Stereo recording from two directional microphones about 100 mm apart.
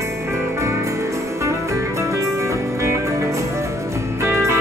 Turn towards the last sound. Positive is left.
turn(degrees=-30)  # may be behind; listen again after turning